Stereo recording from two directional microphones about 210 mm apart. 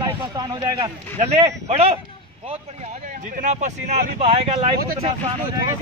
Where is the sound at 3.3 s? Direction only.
35° right (ahead or behind).